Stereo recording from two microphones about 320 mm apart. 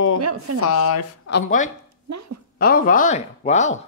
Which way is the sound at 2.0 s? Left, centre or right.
Right.